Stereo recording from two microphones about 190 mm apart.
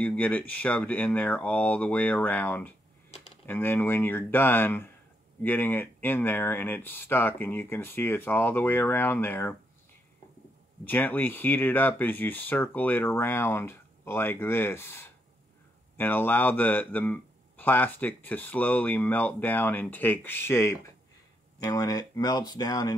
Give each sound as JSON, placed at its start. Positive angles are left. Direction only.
{"t": 0.0, "sound": "speech", "side_deg": 5}
{"t": 10.9, "sound": "speech", "side_deg": 10}